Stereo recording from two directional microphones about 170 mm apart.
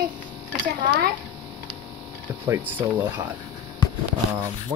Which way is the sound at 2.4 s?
15° right (ahead or behind).